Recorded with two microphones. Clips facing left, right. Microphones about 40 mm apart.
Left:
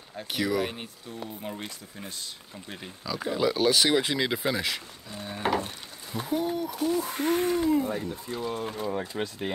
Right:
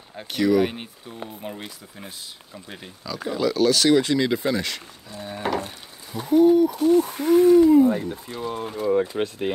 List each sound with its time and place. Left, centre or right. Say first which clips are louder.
0.3 s speech: right 8 dB; centre
0.7 s speech: right 3 dB; centre
3.1 s speech: right 2 dB; centre
3.4 s speech: right 5 dB; centre
7.2 s gasp: right 9 dB; left
7.6 s speech: right 10 dB; centre
7.9 s speech: right 5 dB; centre
8.9 s speech: right 10 dB; right